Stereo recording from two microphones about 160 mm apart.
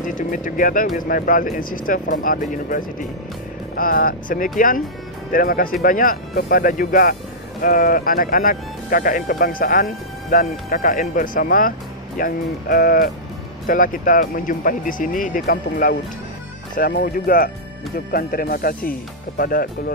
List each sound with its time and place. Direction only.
0.0 s speech: 55° left (ahead or behind)